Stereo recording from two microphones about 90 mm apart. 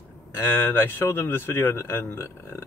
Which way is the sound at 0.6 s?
25° left (ahead or behind).